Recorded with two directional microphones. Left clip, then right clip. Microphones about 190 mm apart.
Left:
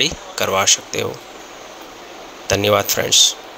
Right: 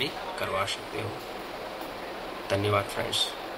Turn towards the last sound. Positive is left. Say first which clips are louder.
# left 13 dB
turn(degrees=50)  # may be behind; listen again after turning